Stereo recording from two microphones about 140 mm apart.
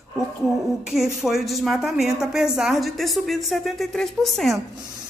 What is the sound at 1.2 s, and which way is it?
A woman's voice, centre (ahead or behind).